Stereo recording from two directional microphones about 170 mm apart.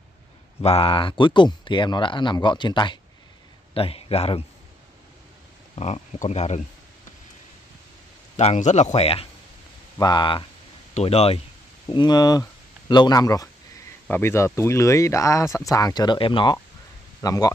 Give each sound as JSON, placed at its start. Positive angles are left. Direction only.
{"t": 0.6, "sound": "a man's voice", "side_deg": 35}
{"t": 5.8, "sound": "speech", "side_deg": 40}
{"t": 8.4, "sound": "speech", "side_deg": 40}
{"t": 11.9, "sound": "speech", "side_deg": 25}